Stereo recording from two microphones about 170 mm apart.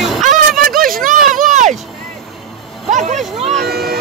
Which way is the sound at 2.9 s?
45° right (ahead or behind).